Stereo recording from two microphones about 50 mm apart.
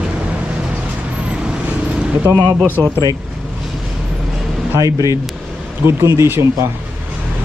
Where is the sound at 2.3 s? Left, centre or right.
Right.